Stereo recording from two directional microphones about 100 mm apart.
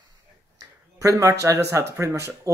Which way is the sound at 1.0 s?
30° right (ahead or behind).